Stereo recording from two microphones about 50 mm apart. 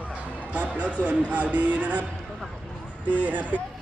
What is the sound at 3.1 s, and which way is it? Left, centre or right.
Speech, right.